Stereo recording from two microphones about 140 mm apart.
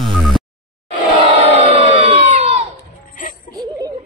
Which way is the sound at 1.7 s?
45° right (ahead or behind).